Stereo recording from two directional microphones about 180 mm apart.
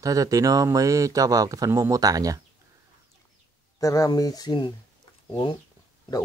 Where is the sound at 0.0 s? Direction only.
20° right (ahead or behind).